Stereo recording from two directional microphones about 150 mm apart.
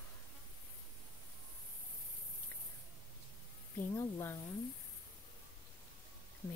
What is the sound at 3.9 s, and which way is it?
Speech, 20° left (ahead or behind).